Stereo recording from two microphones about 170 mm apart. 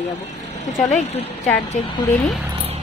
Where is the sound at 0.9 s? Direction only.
40° left (ahead or behind).